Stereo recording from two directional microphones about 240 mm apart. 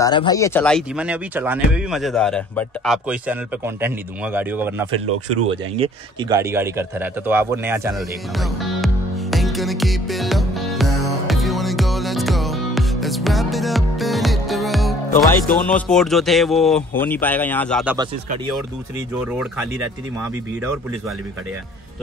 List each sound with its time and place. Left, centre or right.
0.0 s speech: centre
4.9 s speech: right
5.8 s a sound: centre
15.7 s speech: centre
19.1 s speech: centre